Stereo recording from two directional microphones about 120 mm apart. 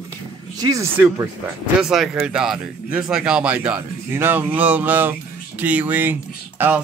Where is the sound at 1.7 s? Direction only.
5° right (ahead or behind).